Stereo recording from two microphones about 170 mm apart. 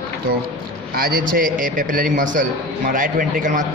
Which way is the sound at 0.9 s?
60° right (ahead or behind).